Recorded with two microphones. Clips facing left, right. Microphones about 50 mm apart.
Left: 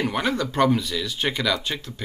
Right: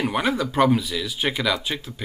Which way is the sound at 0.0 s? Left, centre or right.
Centre.